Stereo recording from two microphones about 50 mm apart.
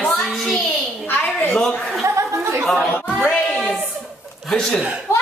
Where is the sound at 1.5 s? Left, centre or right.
Left.